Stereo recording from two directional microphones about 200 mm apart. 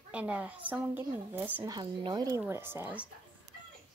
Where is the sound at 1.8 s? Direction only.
20° right (ahead or behind).